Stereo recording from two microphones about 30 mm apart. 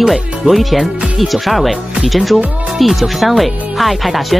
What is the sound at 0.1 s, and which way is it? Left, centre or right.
Speech, centre.